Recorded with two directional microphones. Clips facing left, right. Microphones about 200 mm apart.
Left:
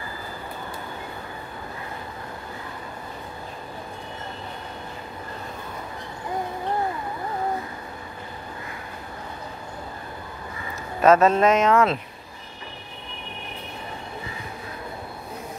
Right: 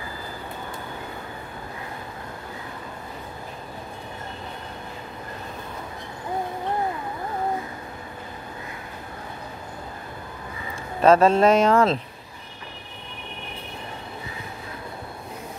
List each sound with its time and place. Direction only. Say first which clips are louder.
11.0 s speech: right 1 dB; 30° right (ahead or behind)